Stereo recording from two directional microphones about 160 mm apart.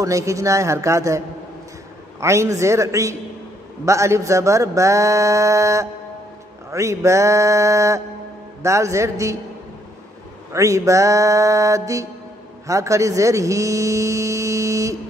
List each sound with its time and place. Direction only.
0.0 s speech: 20° right (ahead or behind)
10.5 s speech: 20° right (ahead or behind)